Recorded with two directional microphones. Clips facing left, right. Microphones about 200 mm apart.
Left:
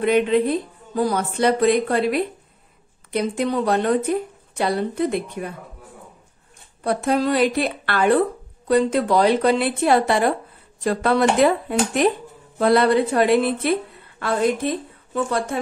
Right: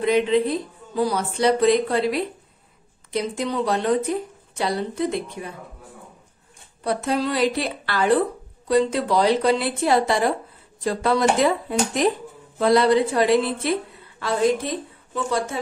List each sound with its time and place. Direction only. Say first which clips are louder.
0.0 s speech: left 1 dB; 55° left (ahead or behind)
6.8 s speech: left 3 dB; 55° left (ahead or behind)